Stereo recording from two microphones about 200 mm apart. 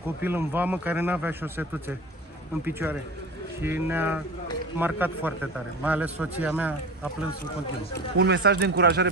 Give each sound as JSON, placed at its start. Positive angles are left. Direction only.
{"t": 0.2, "sound": "a man's voice", "side_deg": -10}
{"t": 8.2, "sound": "speech", "side_deg": -60}